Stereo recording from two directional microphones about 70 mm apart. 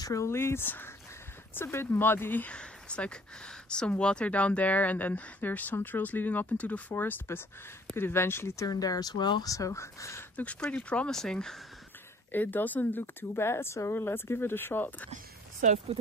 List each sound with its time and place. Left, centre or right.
0.1 s speech: left
2.5 s speech: centre
7.0 s speech: left
8.6 s speech: left
9.5 s speech: left
10.3 s speech: centre
12.3 s speech: left